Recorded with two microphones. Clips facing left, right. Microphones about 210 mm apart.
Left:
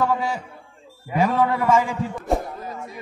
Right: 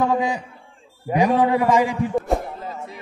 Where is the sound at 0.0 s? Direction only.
20° right (ahead or behind).